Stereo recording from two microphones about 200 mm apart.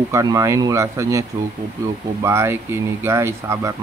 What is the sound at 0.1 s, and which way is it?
Speech, 15° right (ahead or behind).